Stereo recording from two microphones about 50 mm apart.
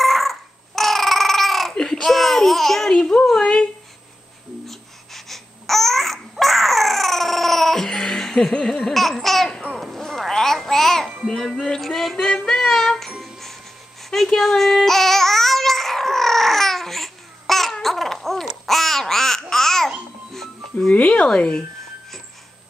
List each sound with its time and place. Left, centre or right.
0.0 s babbling: centre
4.6 s babbling: centre
9.8 s music: centre
12.4 s child singing: centre
13.1 s music: centre
14.1 s a sound: centre
17.8 s babbling: centre
20.9 s telephone: left